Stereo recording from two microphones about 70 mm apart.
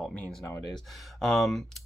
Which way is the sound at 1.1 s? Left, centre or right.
Centre.